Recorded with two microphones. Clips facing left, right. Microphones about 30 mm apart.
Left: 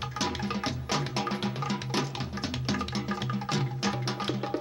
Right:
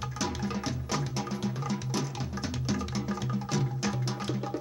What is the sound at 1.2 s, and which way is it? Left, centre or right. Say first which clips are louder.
Music: left 2 dB; left.